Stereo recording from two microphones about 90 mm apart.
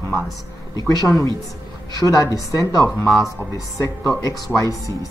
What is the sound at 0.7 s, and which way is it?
Speech, 45° left (ahead or behind).